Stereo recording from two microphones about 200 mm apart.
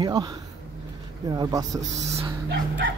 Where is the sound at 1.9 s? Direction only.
35° right (ahead or behind).